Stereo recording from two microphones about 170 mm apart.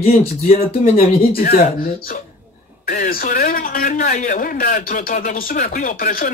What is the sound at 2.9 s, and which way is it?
A man's voice, 55° left (ahead or behind).